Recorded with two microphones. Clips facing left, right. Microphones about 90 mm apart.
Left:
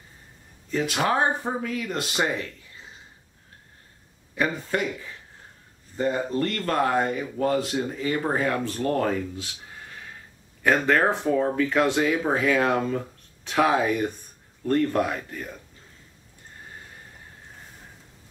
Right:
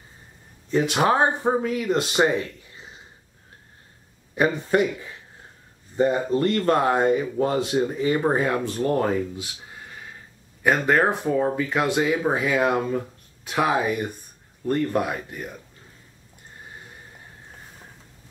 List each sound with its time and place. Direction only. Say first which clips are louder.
0.7 s speech: right 4 dB; 25° right (ahead or behind)
4.4 s speech: right 5 dB; 25° right (ahead or behind)
5.9 s speech: right 4 dB; 20° right (ahead or behind)
10.6 s speech: right 1 dB; 15° right (ahead or behind)